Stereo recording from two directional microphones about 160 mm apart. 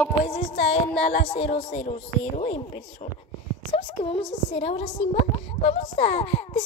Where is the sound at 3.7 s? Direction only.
40° left (ahead or behind).